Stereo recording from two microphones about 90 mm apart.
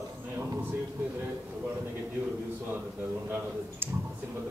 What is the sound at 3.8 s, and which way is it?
Clicking, 25° right (ahead or behind).